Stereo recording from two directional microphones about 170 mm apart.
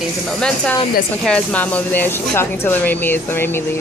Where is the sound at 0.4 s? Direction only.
5° left (ahead or behind).